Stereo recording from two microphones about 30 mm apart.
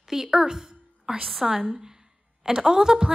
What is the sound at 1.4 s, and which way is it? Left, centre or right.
Speech, centre.